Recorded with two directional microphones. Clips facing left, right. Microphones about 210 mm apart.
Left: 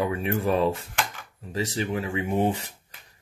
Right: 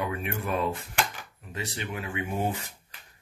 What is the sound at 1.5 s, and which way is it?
Speech, 35° left (ahead or behind).